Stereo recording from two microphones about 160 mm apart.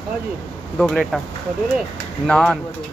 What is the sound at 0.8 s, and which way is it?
Speech, centre (ahead or behind).